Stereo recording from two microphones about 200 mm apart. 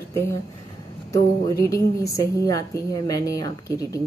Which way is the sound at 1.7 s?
15° left (ahead or behind).